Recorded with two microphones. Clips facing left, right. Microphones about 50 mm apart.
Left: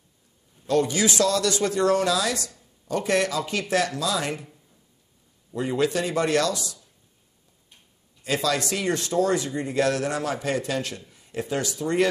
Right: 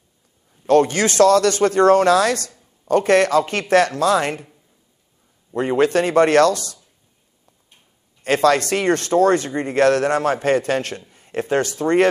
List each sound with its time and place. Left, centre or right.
0.7 s speech: right
5.5 s speech: right
8.2 s speech: right